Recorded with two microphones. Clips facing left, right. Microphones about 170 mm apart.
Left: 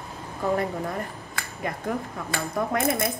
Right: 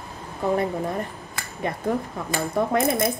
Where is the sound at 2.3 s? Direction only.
25° right (ahead or behind).